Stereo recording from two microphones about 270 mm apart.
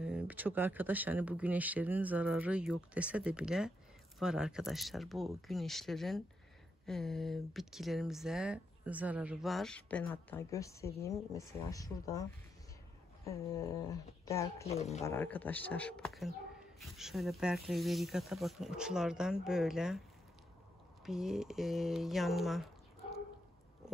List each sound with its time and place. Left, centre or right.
0.0 s speech: centre
14.7 s speech: left
15.0 s speech: centre
21.0 s speech: centre